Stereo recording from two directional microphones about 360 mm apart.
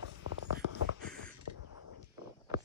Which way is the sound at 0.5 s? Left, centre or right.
Right.